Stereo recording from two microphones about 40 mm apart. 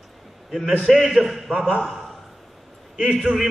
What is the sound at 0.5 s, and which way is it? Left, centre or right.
A man's voice, centre.